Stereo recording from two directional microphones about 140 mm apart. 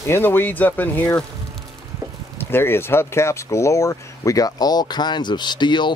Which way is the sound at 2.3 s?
15° left (ahead or behind).